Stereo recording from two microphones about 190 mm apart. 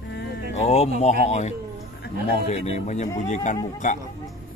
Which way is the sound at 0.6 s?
35° left (ahead or behind).